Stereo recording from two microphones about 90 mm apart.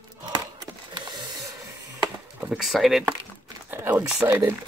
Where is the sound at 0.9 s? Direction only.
55° right (ahead or behind).